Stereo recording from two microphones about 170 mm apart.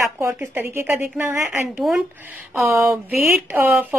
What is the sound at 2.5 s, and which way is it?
Speech, 15° right (ahead or behind).